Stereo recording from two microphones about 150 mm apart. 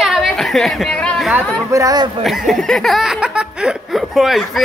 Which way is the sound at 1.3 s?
20° right (ahead or behind).